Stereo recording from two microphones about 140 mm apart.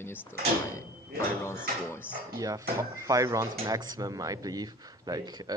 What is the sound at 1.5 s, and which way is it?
Speech, 15° left (ahead or behind).